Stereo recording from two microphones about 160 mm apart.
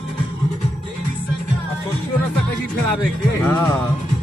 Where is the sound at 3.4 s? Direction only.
10° left (ahead or behind).